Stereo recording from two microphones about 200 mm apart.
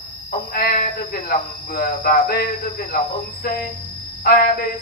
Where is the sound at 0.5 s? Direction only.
45° left (ahead or behind).